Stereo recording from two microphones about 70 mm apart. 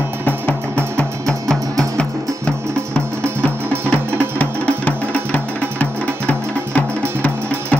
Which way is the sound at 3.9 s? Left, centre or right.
Left.